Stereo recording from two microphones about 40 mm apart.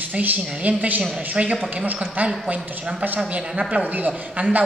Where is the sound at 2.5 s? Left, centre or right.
Right.